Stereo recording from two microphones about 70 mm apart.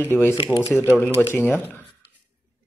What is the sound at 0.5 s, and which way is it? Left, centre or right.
Speech, centre.